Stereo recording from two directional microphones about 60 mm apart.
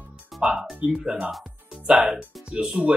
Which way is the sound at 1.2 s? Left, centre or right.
Centre.